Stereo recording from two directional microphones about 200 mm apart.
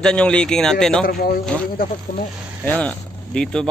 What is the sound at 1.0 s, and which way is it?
Speech, 45° left (ahead or behind).